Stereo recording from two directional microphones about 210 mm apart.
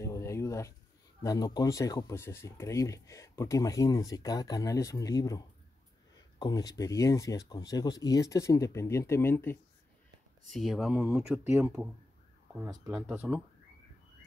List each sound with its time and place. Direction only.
0.0 s a sound: 15° left (ahead or behind)
1.2 s speech: 20° left (ahead or behind)
6.4 s speech: 20° left (ahead or behind)
10.5 s speech: centre (ahead or behind)